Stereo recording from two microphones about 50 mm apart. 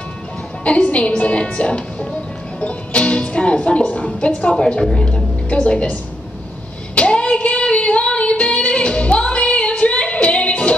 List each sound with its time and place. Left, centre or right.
0.7 s speech: left
4.6 s a woman's voice: centre
7.0 s female singing: left